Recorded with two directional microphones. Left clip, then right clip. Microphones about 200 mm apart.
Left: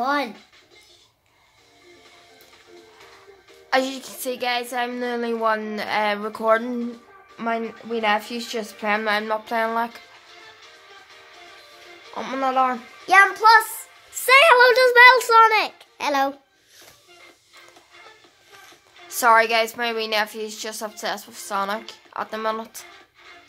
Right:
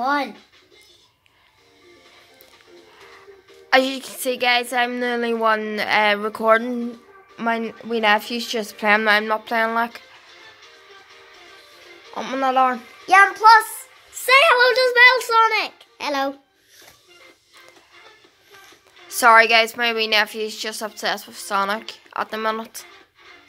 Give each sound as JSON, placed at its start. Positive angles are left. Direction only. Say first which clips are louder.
{"t": 0.0, "sound": "music", "louder": "right 1 dB", "side_deg": 0}
{"t": 3.7, "sound": "a woman's voice", "louder": "right 5 dB", "side_deg": -10}
{"t": 9.2, "sound": "a woman's voice", "louder": "right 3 dB", "side_deg": -10}
{"t": 12.1, "sound": "a child's voice", "louder": "right 2 dB", "side_deg": -10}
{"t": 14.2, "sound": "a child's voice", "louder": "left 1 dB", "side_deg": 20}
{"t": 19.0, "sound": "a woman's voice", "louder": "right 4 dB", "side_deg": -10}